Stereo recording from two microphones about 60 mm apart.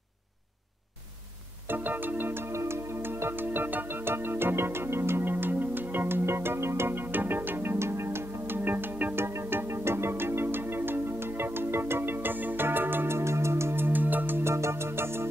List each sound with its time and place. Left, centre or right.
1.7 s music: right
9.2 s music: right
14.4 s music: right